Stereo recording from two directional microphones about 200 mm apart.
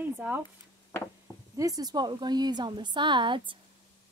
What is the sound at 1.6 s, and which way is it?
A woman's voice, 20° right (ahead or behind).